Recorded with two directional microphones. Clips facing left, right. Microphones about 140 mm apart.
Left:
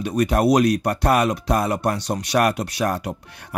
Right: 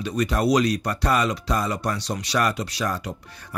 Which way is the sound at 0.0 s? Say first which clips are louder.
Left 4 dB; 55° left (ahead or behind).